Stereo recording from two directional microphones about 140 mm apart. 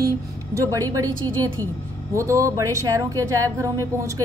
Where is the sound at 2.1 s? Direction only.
20° right (ahead or behind).